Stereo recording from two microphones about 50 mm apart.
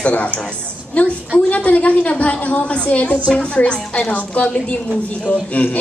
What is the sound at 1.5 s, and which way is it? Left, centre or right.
A woman's voice, left.